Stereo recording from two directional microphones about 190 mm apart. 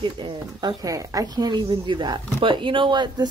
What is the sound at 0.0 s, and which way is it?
Speech, 25° right (ahead or behind).